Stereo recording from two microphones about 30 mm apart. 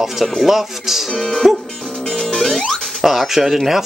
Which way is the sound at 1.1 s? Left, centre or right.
Left.